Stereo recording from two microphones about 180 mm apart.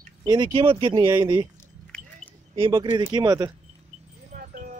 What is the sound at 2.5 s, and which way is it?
Speech, 30° right (ahead or behind).